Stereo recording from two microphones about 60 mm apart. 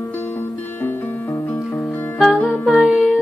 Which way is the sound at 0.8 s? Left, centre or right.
Left.